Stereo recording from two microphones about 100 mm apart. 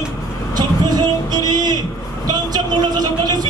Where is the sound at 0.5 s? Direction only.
45° right (ahead or behind).